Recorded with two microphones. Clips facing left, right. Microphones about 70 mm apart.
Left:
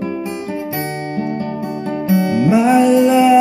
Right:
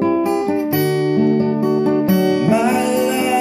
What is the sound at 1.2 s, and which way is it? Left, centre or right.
Music, left.